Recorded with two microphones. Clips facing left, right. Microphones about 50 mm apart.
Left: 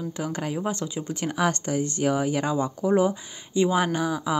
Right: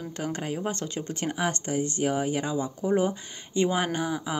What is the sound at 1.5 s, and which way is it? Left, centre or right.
Speech, right.